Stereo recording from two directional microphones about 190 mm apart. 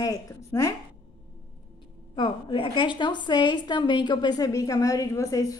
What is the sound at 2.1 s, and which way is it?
A woman's voice, 25° left (ahead or behind).